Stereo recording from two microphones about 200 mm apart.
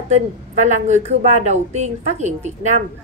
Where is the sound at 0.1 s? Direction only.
35° right (ahead or behind).